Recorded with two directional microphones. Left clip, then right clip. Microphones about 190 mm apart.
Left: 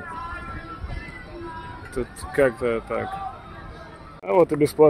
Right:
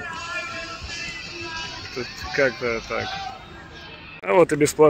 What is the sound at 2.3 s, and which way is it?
Speech, 25° left (ahead or behind).